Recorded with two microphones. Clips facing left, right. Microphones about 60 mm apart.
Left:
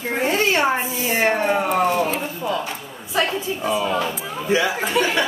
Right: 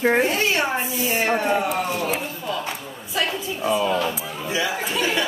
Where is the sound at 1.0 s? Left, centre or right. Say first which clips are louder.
Left 4 dB; left.